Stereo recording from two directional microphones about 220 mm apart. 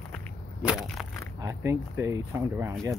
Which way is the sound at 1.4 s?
15° right (ahead or behind).